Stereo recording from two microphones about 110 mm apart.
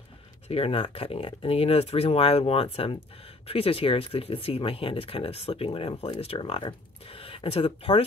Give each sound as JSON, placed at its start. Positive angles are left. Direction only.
{"t": 0.5, "sound": "speech", "side_deg": 60}